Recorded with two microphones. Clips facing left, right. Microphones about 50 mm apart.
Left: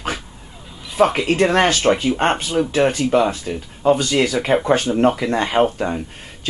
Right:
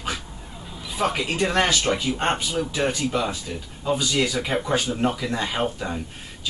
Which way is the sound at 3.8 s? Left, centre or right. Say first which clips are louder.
Left 8 dB; left.